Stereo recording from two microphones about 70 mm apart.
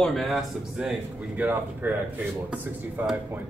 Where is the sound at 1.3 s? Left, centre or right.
Right.